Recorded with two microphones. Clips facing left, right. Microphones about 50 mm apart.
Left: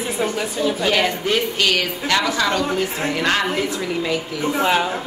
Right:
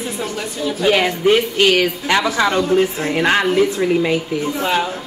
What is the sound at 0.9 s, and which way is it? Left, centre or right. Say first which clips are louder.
A woman's voice: right 9 dB; centre.